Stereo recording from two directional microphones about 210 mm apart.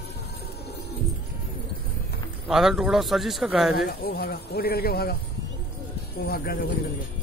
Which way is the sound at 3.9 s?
45° left (ahead or behind).